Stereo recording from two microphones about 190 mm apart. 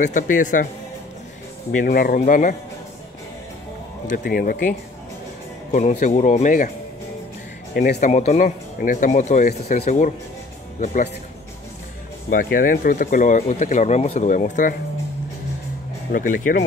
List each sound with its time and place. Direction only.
0.0 s speech: 45° left (ahead or behind)
1.7 s speech: 45° left (ahead or behind)
4.2 s speech: 50° left (ahead or behind)
7.7 s speech: 50° left (ahead or behind)
12.3 s speech: 50° left (ahead or behind)
16.1 s speech: 45° left (ahead or behind)